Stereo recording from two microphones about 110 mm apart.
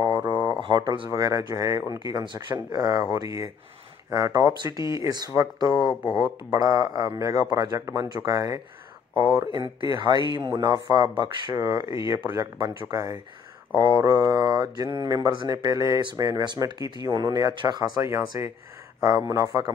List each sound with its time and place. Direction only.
0.6 s speech: 45° right (ahead or behind)
1.1 s speech: 30° right (ahead or behind)
5.7 s speech: 5° right (ahead or behind)
6.5 s speech: 35° right (ahead or behind)
9.1 s speech: 25° left (ahead or behind)
9.6 s speech: 45° right (ahead or behind)